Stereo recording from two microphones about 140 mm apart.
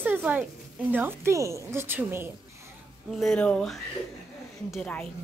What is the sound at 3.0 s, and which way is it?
A woman's voice, centre (ahead or behind).